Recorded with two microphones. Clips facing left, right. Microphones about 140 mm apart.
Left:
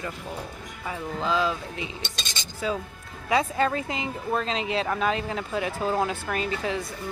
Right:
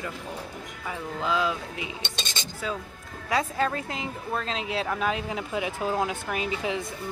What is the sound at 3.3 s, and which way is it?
Speech, centre (ahead or behind).